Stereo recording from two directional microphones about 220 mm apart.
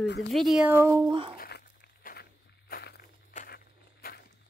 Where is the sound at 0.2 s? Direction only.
Centre (ahead or behind); by 1.3 s 20° right (ahead or behind).